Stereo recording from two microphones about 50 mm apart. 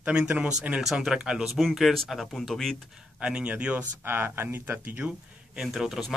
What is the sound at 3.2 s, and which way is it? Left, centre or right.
Speech, right.